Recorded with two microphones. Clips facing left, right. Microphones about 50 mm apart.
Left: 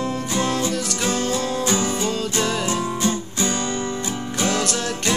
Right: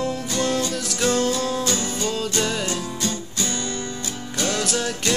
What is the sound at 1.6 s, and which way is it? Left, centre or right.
Music, centre.